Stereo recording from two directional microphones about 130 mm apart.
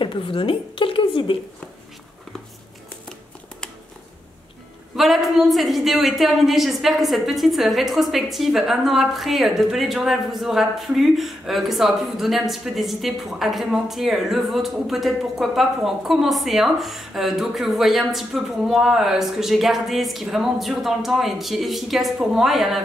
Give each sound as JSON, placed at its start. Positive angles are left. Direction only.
{"t": 0.0, "sound": "a woman's voice", "side_deg": 40}
{"t": 4.9, "sound": "a woman's voice", "side_deg": 0}